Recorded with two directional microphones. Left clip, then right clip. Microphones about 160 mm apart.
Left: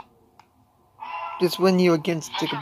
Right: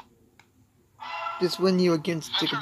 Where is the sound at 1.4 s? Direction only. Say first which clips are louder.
Left 4 dB; 15° left (ahead or behind).